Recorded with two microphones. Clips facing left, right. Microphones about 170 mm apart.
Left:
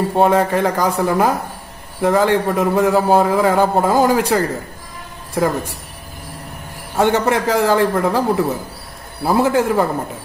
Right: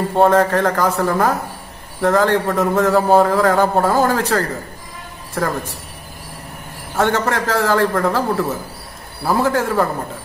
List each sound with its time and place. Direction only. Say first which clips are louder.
0.1 s a man's voice: right 2 dB; 15° left (ahead or behind)
7.0 s a man's voice: left 2 dB; 15° left (ahead or behind)